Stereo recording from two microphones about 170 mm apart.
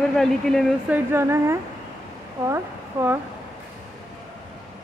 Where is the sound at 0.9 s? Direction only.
15° right (ahead or behind).